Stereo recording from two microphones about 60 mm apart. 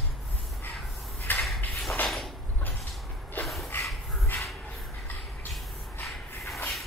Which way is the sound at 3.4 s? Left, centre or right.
Left.